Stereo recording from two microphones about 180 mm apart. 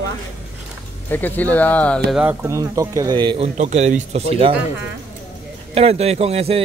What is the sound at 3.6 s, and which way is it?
Speech, 40° right (ahead or behind).